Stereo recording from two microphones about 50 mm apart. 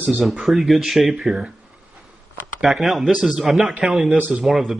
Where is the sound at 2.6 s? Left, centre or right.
Centre.